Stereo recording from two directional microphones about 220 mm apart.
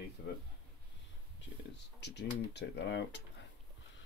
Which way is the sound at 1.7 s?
50° left (ahead or behind).